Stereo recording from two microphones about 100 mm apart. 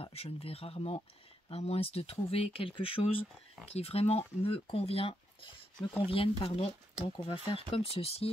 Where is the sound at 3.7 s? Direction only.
90° left.